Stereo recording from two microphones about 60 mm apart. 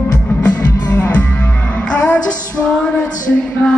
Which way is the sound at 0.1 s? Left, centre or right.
Left.